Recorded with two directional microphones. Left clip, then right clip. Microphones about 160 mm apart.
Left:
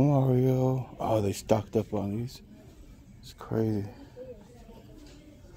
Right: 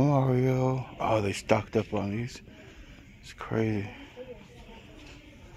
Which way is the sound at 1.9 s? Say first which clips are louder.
Right 1 dB; 15° left (ahead or behind).